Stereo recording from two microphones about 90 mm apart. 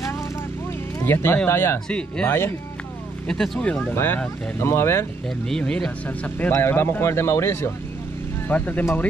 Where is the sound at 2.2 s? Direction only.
25° left (ahead or behind).